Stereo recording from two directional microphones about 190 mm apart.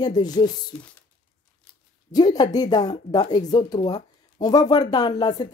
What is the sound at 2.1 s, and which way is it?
Speech, 20° left (ahead or behind).